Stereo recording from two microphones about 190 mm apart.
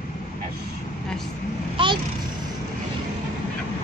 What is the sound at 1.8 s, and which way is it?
Vehicle, 25° right (ahead or behind).